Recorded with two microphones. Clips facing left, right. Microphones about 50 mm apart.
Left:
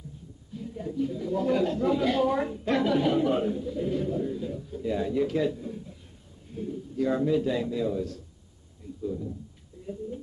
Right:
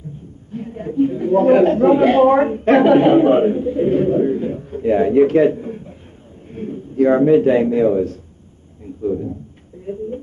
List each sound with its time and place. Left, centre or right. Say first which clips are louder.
0.5 s a man's voice: right 9 dB; right
8.8 s a sound: right 12 dB; right
9.9 s speech: right 10 dB; right